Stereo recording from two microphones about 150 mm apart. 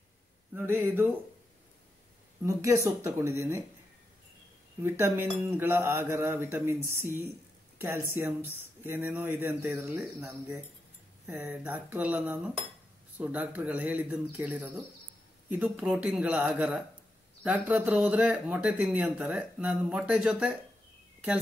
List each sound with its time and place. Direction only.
0.6 s speech: 15° right (ahead or behind)
2.4 s speech: 20° right (ahead or behind)
4.8 s speech: 15° right (ahead or behind)
7.8 s speech: 15° right (ahead or behind)
10.0 s speech: centre (ahead or behind)
11.2 s speech: 10° right (ahead or behind)